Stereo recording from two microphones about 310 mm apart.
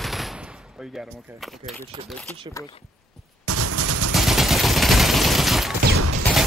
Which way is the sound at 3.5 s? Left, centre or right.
Right.